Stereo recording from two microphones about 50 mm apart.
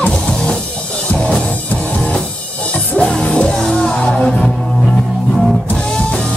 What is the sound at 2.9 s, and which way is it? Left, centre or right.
Music, centre.